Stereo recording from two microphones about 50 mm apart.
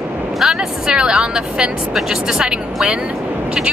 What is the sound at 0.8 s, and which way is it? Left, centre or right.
Speech, centre.